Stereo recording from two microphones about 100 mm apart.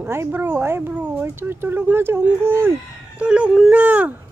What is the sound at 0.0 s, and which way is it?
Speech, 20° right (ahead or behind).